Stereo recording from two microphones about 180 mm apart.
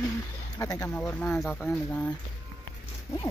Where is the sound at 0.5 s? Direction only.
20° left (ahead or behind).